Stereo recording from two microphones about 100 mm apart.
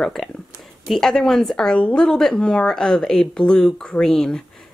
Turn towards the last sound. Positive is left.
turn(degrees=5)  # may be behind; listen again after turning